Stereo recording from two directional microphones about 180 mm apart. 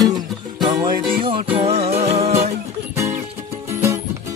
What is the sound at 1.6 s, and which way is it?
Music, 35° right (ahead or behind).